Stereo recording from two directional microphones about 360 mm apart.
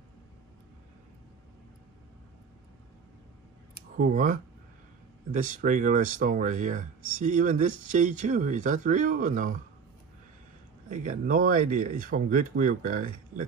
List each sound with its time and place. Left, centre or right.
3.9 s speech: right
10.9 s speech: right